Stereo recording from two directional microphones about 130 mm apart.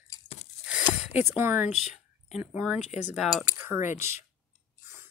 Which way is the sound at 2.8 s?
65° left (ahead or behind).